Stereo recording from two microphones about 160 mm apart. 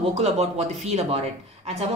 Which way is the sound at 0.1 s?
45° right (ahead or behind).